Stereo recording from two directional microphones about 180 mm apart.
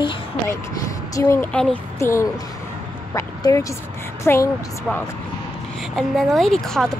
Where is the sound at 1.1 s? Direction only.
15° left (ahead or behind).